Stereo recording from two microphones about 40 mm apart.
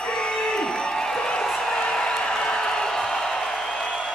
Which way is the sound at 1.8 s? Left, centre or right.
Left.